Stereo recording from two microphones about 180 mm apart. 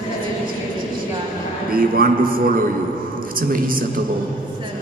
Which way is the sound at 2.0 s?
55° right (ahead or behind).